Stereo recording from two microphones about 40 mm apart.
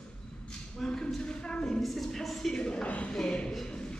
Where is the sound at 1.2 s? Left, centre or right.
Left.